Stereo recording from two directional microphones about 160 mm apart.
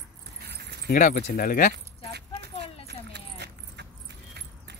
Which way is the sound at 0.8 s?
60° left (ahead or behind).